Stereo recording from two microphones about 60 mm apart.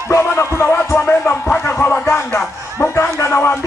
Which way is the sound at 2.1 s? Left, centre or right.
Left.